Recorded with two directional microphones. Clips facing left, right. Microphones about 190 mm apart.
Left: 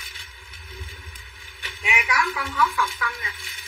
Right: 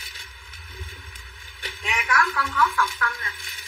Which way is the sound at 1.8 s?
10° left (ahead or behind).